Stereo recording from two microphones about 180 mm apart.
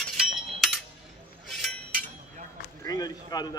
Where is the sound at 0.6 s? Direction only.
Centre (ahead or behind).